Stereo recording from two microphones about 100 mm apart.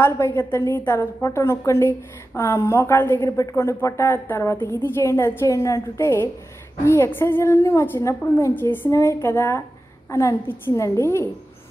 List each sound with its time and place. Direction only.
0.0 s a woman's voice: 25° left (ahead or behind)